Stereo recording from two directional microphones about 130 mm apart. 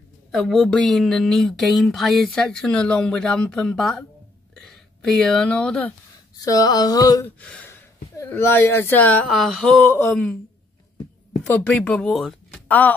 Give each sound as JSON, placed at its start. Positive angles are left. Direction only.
{"t": 0.3, "sound": "speech", "side_deg": 0}
{"t": 6.3, "sound": "a sound", "side_deg": 25}
{"t": 7.3, "sound": "speech", "side_deg": 10}
{"t": 9.3, "sound": "speech", "side_deg": 0}
{"t": 11.4, "sound": "speech", "side_deg": 10}
{"t": 12.6, "sound": "speech", "side_deg": 10}